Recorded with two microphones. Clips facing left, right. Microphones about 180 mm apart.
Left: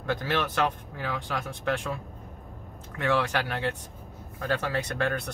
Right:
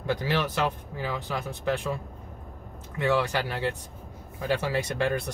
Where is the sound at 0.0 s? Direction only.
10° right (ahead or behind).